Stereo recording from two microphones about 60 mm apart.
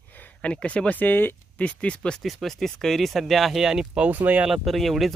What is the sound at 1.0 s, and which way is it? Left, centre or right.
Speech, left.